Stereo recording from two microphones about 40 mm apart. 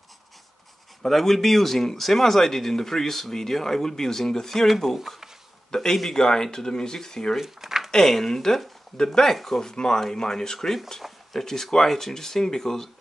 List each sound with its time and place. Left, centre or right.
1.0 s speech: centre
4.6 s speech: centre
5.7 s a man's voice: centre
7.3 s speech: centre
7.9 s speech: centre